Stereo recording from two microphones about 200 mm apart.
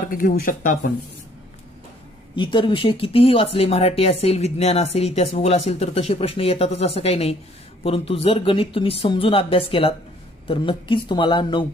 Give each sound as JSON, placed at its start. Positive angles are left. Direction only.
{"t": 0.1, "sound": "speech", "side_deg": 45}
{"t": 2.3, "sound": "speech", "side_deg": 25}